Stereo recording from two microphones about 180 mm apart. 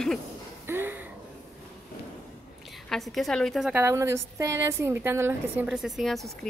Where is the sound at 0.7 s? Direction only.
10° right (ahead or behind).